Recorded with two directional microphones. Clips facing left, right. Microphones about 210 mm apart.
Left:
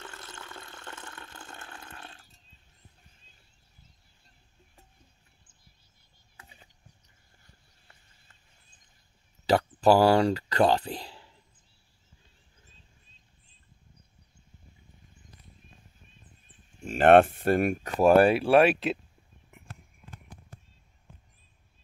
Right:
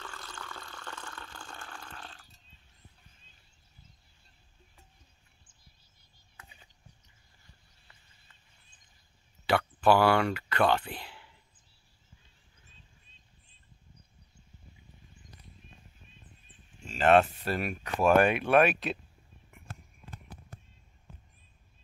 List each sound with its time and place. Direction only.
0.0 s water: 25° left (ahead or behind)
6.3 s a sound: 30° left (ahead or behind)
9.5 s speech: 40° left (ahead or behind)
16.8 s speech: 55° left (ahead or behind)
18.0 s speech: 35° left (ahead or behind)